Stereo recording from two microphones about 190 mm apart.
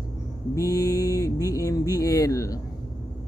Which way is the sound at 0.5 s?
20° left (ahead or behind).